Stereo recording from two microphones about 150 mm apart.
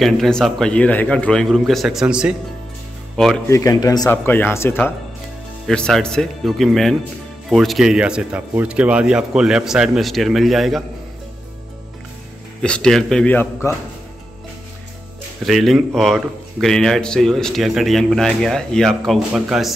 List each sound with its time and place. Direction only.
0.0 s a man's voice: 5° left (ahead or behind)
3.4 s speech: 20° left (ahead or behind)
4.1 s a man's voice: 15° left (ahead or behind)
5.7 s a man's voice: 5° left (ahead or behind)
12.6 s a man's voice: 5° left (ahead or behind)
15.4 s a man's voice: centre (ahead or behind)